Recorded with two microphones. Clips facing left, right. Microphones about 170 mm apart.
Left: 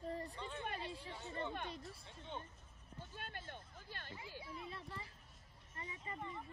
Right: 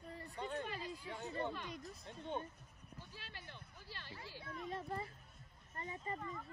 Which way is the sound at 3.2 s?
50° left (ahead or behind).